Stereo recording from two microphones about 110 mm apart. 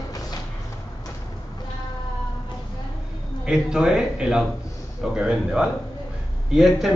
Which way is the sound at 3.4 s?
5° right (ahead or behind).